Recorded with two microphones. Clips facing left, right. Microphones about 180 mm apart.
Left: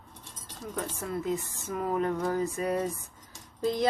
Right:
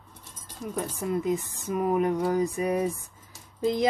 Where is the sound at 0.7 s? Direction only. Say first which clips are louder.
Right 5 dB; 15° right (ahead or behind).